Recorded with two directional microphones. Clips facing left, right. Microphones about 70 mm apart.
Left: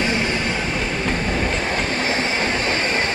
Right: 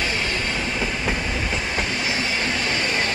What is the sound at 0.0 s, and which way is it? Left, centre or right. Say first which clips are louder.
Train: left 4 dB; left.